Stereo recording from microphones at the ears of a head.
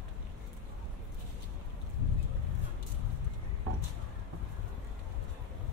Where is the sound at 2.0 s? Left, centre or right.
Left.